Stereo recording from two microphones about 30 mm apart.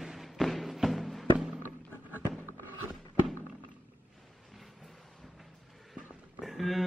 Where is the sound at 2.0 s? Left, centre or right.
Right.